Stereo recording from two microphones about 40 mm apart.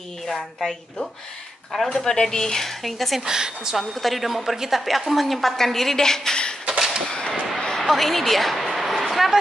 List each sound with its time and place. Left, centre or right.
0.3 s a woman's voice: centre
2.0 s speech: centre
2.8 s a woman's voice: centre
3.3 s a woman's voice: centre
3.7 s a woman's voice: centre
7.1 s whip: left
7.7 s a sound: centre